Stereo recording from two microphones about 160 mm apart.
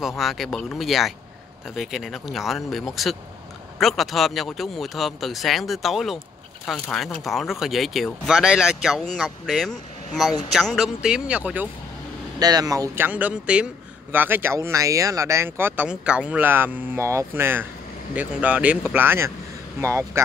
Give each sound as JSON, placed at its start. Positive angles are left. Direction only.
{"t": 0.2, "sound": "speech", "side_deg": 0}
{"t": 12.4, "sound": "speech", "side_deg": -25}